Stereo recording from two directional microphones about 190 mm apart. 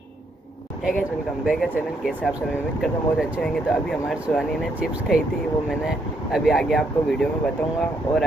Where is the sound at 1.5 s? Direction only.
Centre (ahead or behind).